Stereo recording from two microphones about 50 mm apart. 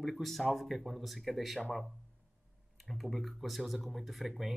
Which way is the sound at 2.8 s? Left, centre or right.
Centre.